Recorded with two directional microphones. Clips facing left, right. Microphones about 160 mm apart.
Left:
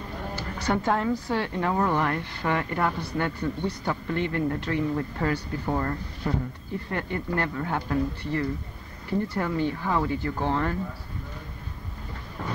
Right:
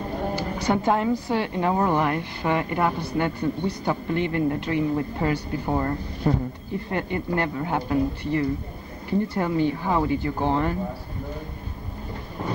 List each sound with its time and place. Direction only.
0.4 s a woman's voice: 15° right (ahead or behind)
6.2 s speech: 30° right (ahead or behind)
6.9 s a woman's voice: 20° right (ahead or behind)